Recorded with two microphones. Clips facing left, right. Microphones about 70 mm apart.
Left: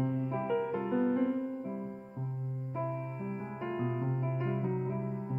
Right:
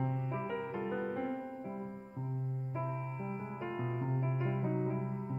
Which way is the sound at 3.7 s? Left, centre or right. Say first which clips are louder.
Left 4 dB; centre.